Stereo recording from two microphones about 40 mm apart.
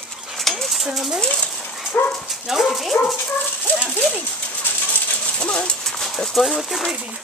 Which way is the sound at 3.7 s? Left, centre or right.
Right.